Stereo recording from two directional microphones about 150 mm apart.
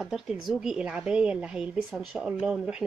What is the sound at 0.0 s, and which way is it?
Speech, 5° right (ahead or behind).